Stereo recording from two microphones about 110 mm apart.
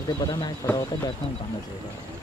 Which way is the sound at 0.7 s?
35° left (ahead or behind).